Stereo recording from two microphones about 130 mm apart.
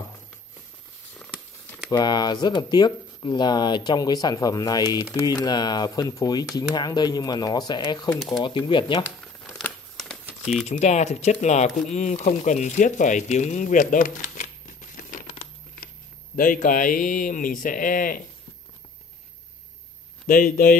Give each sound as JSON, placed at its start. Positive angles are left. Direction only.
{"t": 1.1, "sound": "patter", "side_deg": 10}
{"t": 1.9, "sound": "speech", "side_deg": 30}
{"t": 10.7, "sound": "speech", "side_deg": 60}
{"t": 16.3, "sound": "speech", "side_deg": 90}
{"t": 20.2, "sound": "speech", "side_deg": 90}